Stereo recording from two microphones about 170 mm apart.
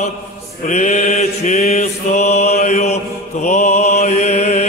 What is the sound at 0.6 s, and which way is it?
Mantra, 45° left (ahead or behind).